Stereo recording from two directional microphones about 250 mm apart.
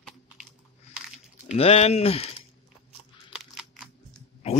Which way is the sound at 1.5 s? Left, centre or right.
Left.